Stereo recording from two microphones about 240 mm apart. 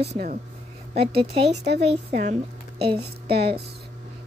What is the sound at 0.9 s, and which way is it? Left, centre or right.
A woman's voice, right.